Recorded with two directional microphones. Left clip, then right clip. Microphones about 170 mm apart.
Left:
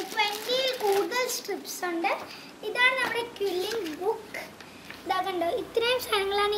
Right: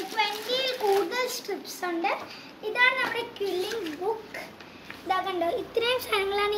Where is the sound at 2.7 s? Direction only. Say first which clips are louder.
Right 1 dB; 15° left (ahead or behind).